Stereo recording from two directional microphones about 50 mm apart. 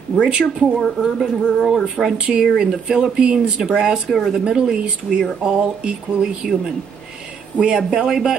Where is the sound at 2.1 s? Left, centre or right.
Centre.